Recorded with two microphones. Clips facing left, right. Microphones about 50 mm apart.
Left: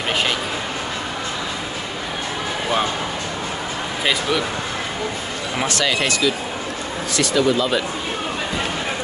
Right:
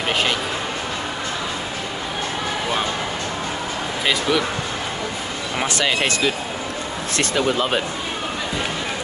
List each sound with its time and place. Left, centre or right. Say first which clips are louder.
4.0 s speech: even; centre
5.8 s speech: even; right